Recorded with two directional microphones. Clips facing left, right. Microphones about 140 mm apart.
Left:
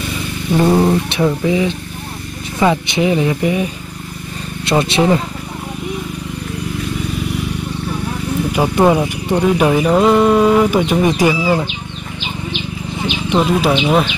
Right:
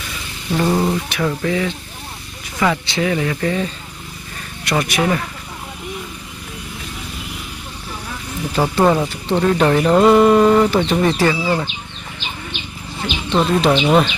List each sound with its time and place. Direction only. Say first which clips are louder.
0.7 s speech: left 5 dB; 20° left (ahead or behind)
4.6 s speech: left 5 dB; 25° left (ahead or behind)
8.5 s speech: left 2 dB; 15° left (ahead or behind)
12.9 s speech: left 2 dB; 15° left (ahead or behind)